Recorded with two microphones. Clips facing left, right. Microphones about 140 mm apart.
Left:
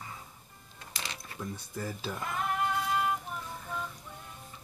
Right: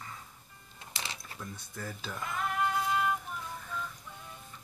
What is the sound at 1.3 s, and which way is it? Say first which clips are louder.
Speech: left 5 dB; 10° left (ahead or behind).